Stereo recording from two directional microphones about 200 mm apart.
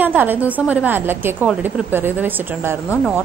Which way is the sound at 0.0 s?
10° right (ahead or behind).